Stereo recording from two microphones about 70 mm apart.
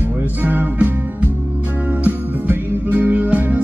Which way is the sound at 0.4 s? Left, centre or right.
Right.